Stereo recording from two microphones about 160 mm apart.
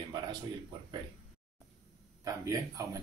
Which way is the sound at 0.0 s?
30° right (ahead or behind).